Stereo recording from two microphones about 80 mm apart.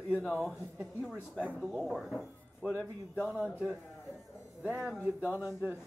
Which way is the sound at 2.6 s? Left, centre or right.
Right.